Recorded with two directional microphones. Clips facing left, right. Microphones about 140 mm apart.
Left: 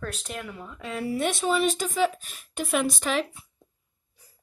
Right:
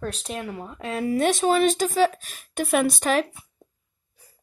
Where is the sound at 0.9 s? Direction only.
45° right (ahead or behind).